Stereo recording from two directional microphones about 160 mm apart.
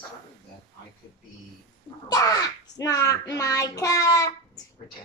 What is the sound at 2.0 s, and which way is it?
A child's voice, 25° left (ahead or behind).